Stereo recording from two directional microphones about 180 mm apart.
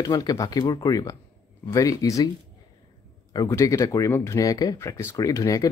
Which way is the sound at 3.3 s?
20° left (ahead or behind).